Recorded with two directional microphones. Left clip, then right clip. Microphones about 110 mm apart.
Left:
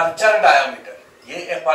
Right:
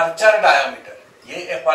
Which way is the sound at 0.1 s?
15° left (ahead or behind).